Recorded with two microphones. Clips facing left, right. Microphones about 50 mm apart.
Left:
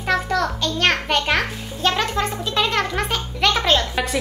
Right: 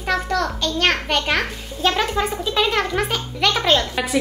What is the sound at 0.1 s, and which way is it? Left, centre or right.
A child's voice, centre.